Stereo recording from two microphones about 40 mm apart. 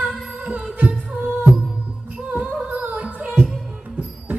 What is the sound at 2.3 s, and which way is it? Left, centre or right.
Music, right.